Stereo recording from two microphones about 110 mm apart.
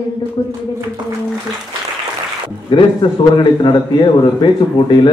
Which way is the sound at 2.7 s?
45° left (ahead or behind).